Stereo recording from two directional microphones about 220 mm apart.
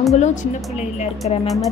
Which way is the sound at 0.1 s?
35° left (ahead or behind).